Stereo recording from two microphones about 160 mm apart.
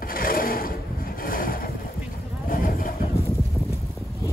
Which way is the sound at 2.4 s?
60° left (ahead or behind).